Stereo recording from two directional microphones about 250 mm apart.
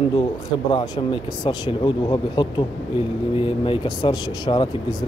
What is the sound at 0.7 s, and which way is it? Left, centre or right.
Speech, centre.